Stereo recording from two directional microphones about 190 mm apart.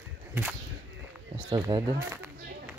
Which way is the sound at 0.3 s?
10° right (ahead or behind).